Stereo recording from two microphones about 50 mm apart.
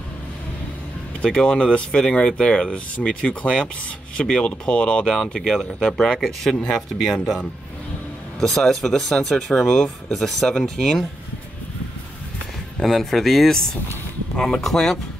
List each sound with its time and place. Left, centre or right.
1.2 s speech: left
6.1 s speech: centre
8.4 s speech: centre
12.8 s speech: centre